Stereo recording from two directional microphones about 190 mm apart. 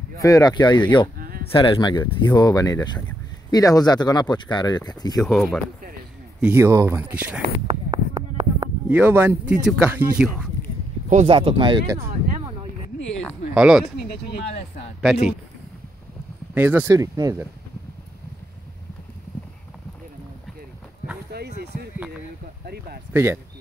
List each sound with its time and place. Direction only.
0.2 s speech: 20° left (ahead or behind)
1.1 s a sound: 50° right (ahead or behind)
1.5 s speech: 25° left (ahead or behind)
5.2 s speech: centre (ahead or behind)
6.4 s speech: 10° right (ahead or behind)
7.6 s a sound: 25° right (ahead or behind)
8.8 s speech: 10° right (ahead or behind)
11.1 s speech: 35° right (ahead or behind)
13.6 s speech: 5° right (ahead or behind)
13.9 s speech: 55° left (ahead or behind)
15.1 s speech: centre (ahead or behind)
16.5 s speech: 10° right (ahead or behind)
21.3 s basketball bounce: 55° right (ahead or behind)
23.1 s speech: 10° right (ahead or behind)